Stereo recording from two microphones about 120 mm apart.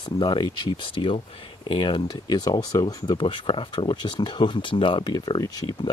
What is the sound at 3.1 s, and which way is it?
Speech, 45° left (ahead or behind).